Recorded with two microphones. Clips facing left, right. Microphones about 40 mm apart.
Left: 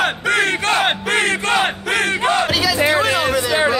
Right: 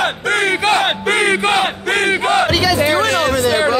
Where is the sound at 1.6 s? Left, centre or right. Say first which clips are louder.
Right 2 dB; centre.